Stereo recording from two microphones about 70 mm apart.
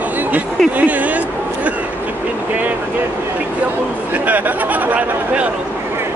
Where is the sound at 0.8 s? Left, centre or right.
Right.